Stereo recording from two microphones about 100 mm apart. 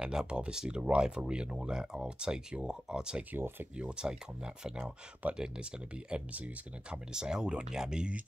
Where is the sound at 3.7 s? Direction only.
10° right (ahead or behind).